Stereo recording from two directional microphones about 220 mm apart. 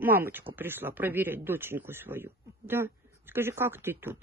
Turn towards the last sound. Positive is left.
turn(degrees=-10)  # may be behind; listen again after turning